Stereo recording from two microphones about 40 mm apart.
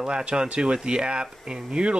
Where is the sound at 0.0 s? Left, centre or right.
Right.